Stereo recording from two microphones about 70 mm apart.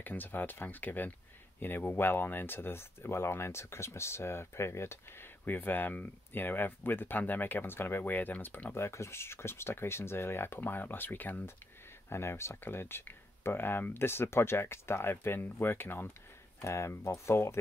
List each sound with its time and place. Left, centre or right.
0.0 s speech: left
5.4 s speech: left
8.7 s speech: left
12.1 s speech: left
16.6 s speech: left